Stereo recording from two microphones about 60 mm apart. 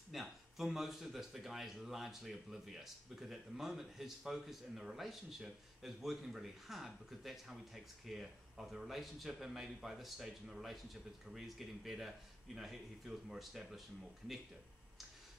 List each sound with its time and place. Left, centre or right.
0.1 s speech: centre